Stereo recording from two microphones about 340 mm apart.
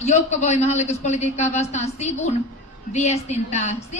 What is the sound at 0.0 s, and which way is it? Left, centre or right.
A woman's voice, centre.